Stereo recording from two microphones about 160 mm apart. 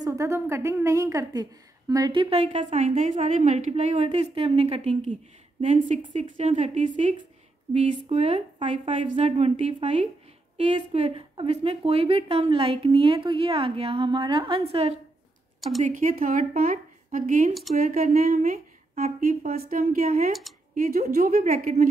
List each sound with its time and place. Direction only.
0.0 s a woman's voice: 20° right (ahead or behind)
2.4 s a woman's voice: 45° right (ahead or behind)
15.8 s a woman's voice: 55° right (ahead or behind)